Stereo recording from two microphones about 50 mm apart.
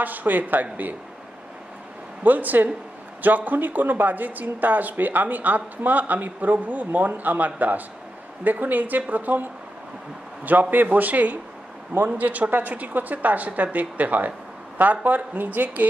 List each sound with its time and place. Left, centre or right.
0.0 s speech: right
2.2 s speech: right